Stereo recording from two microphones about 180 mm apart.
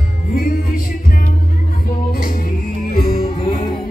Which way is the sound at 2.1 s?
55° left (ahead or behind).